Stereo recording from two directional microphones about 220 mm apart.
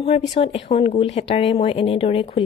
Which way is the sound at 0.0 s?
25° left (ahead or behind).